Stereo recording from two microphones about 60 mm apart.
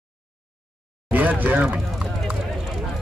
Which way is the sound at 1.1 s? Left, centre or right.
Right.